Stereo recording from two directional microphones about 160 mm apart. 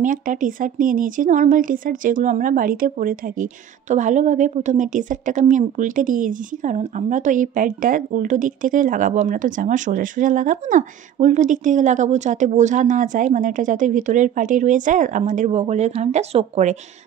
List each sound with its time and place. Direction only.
0.0 s a woman's voice: 55° right (ahead or behind)